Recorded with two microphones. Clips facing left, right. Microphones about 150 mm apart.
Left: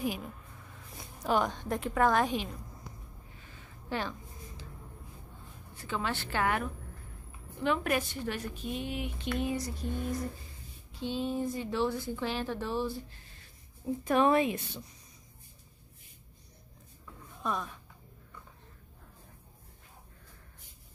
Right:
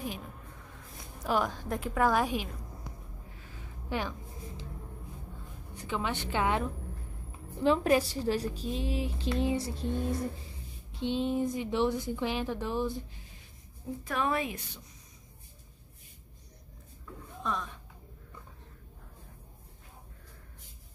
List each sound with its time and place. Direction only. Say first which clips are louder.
1.2 s a woman's voice: left 1 dB; centre (ahead or behind)
3.9 s a woman's voice: right 1 dB; 10° right (ahead or behind)
5.8 s a woman's voice: right 1 dB; 15° right (ahead or behind)
14.0 s a woman's voice: left 6 dB; 25° left (ahead or behind)
17.4 s speech: even; 10° left (ahead or behind)